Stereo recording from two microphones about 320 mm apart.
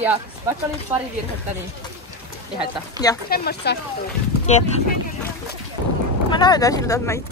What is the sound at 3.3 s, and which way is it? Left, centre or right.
Speech, left.